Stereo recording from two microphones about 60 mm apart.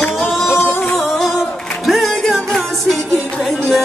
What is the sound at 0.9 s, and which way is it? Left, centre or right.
Music, centre.